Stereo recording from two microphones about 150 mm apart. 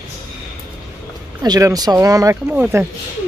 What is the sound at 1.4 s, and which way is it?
Speech, 25° right (ahead or behind).